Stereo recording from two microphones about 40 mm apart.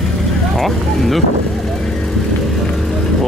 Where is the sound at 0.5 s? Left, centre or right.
Centre.